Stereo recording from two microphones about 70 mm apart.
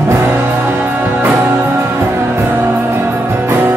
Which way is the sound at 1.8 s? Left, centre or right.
Right.